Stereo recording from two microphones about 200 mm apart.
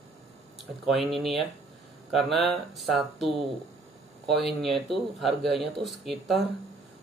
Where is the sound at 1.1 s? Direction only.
Centre (ahead or behind).